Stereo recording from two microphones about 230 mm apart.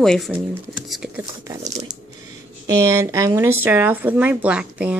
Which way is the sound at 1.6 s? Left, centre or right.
Right.